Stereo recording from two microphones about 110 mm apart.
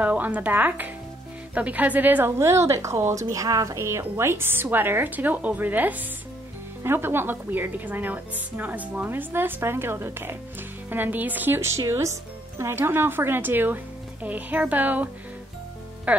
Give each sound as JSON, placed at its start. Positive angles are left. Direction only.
{"t": 0.0, "sound": "a woman's voice", "side_deg": -15}
{"t": 16.1, "sound": "speech", "side_deg": -15}